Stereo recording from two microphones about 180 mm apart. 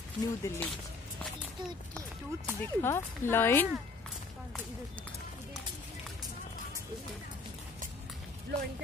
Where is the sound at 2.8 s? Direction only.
15° left (ahead or behind).